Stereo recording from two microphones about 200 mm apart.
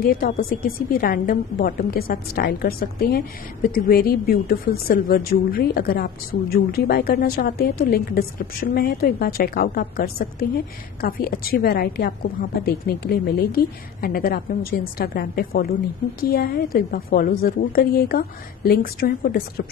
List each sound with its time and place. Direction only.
0.0 s a woman's voice: 45° left (ahead or behind)